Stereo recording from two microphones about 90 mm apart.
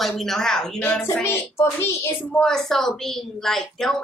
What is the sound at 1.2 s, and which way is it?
Speech, 25° left (ahead or behind).